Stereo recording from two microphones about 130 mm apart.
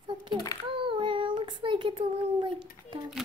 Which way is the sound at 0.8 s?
40° right (ahead or behind).